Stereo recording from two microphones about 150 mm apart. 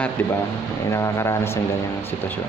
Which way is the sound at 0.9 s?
20° left (ahead or behind).